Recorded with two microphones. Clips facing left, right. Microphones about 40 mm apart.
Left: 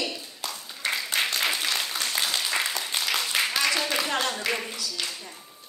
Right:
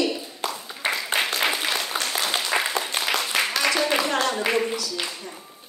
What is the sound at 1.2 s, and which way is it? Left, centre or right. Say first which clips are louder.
Applause: right 3 dB; centre.